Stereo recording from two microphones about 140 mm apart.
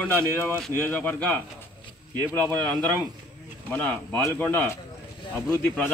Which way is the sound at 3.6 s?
15° left (ahead or behind).